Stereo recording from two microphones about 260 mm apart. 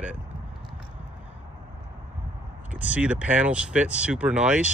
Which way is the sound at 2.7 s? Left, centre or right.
Centre.